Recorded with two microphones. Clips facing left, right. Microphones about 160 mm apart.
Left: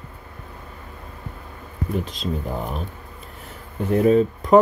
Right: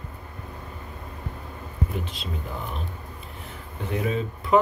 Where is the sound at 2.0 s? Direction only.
40° left (ahead or behind).